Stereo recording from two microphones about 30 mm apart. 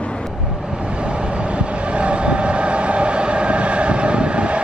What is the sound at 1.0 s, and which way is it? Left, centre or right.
Train, right.